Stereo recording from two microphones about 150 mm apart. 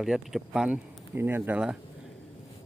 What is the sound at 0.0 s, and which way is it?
Speech, 5° right (ahead or behind).